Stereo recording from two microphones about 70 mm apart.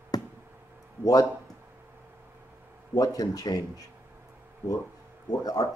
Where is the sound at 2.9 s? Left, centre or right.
Left.